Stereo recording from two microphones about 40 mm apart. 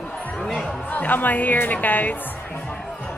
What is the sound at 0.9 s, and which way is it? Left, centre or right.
Speech, left.